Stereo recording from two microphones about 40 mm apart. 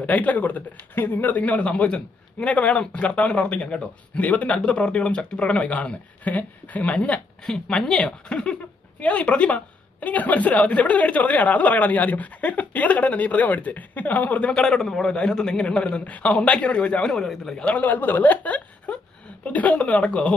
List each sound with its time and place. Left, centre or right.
0.0 s a woman's voice: left
7.4 s a man's voice: centre; by 14.5 s left
14.5 s a man's voice: centre
15.0 s a man's voice: left
17.1 s a man's voice: centre
17.7 s speech: left
18.9 s a sound: left
19.4 s a woman's voice: left